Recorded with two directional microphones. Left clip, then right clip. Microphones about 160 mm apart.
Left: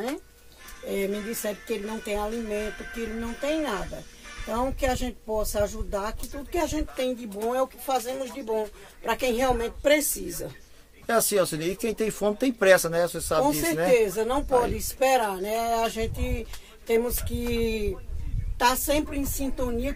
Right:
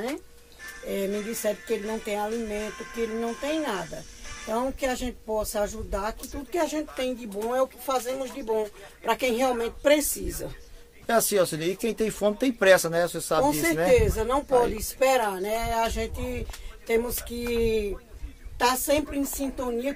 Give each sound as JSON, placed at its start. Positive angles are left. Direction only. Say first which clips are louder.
{"t": 0.8, "sound": "speech", "louder": "even", "side_deg": 0}
{"t": 2.2, "sound": "speech", "louder": "even", "side_deg": -40}
{"t": 3.0, "sound": "a woman's voice", "louder": "right 4 dB", "side_deg": -10}